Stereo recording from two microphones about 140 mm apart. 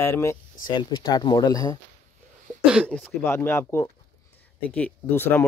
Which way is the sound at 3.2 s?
20° left (ahead or behind).